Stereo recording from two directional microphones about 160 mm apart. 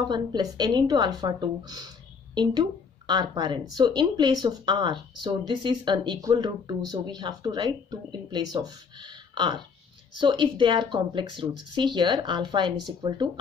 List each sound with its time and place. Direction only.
0.0 s speech: 25° right (ahead or behind)